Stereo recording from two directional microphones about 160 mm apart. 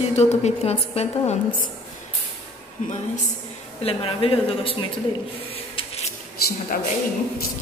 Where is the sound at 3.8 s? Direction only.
35° left (ahead or behind).